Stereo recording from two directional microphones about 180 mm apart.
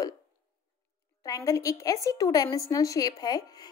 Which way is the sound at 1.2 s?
20° left (ahead or behind).